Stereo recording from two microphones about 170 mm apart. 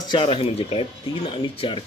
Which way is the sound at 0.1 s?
30° left (ahead or behind).